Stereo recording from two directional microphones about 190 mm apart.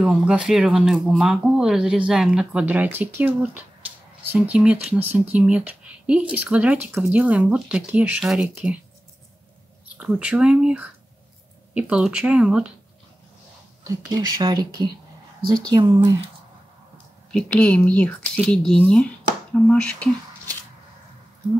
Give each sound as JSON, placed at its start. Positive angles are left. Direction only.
{"t": 0.0, "sound": "speech", "side_deg": -5}
{"t": 9.9, "sound": "speech", "side_deg": -5}
{"t": 13.8, "sound": "speech", "side_deg": -20}
{"t": 17.3, "sound": "speech", "side_deg": 5}